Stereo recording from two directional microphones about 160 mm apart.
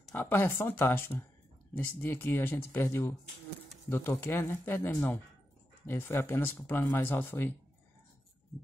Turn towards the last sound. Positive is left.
turn(degrees=10)  # may be behind; listen again after turning